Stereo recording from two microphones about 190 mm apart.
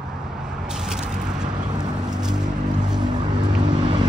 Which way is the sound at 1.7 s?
20° right (ahead or behind).